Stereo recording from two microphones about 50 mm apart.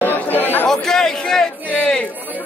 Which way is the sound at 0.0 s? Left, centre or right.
Left.